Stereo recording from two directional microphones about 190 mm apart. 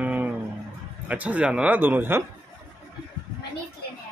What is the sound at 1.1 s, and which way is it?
Speech, 10° right (ahead or behind).